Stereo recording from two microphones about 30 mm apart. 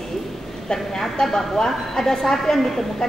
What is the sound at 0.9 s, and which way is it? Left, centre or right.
A woman's voice, centre.